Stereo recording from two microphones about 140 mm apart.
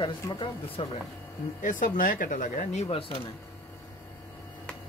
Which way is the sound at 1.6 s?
70° left (ahead or behind).